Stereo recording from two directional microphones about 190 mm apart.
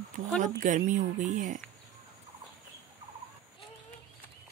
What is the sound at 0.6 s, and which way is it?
Speech, 40° right (ahead or behind).